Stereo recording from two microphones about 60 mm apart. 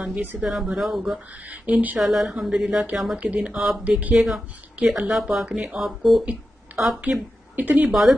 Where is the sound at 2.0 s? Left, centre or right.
Centre.